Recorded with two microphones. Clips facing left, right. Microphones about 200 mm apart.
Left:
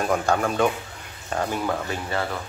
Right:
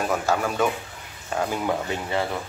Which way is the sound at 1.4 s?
15° right (ahead or behind).